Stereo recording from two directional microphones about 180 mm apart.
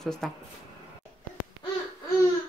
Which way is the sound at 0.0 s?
Centre (ahead or behind).